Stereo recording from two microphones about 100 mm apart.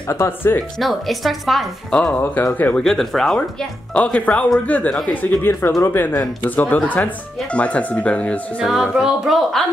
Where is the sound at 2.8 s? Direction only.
Centre (ahead or behind).